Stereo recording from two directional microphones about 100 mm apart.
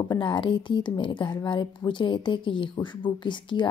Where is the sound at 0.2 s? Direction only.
55° left (ahead or behind).